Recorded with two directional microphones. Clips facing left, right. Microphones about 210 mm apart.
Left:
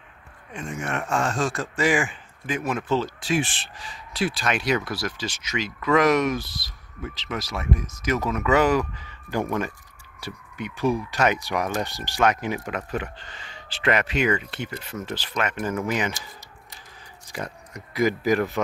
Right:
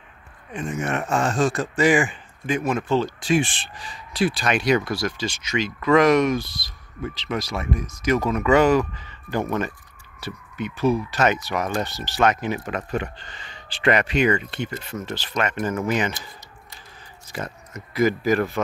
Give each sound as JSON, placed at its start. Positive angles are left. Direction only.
{"t": 0.5, "sound": "speech", "side_deg": -5}
{"t": 17.3, "sound": "speech", "side_deg": 15}